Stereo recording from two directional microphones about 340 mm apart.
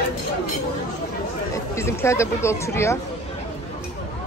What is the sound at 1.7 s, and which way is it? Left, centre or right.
Speech, centre.